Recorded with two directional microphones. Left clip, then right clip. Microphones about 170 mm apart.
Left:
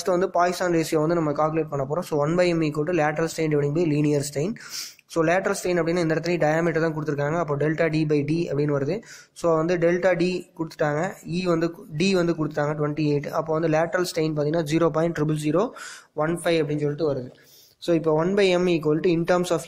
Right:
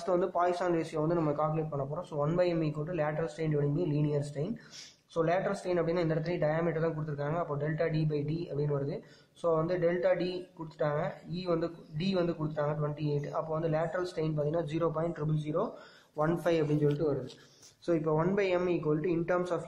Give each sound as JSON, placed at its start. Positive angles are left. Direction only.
{"t": 0.0, "sound": "speech", "side_deg": 25}
{"t": 16.2, "sound": "speech", "side_deg": 15}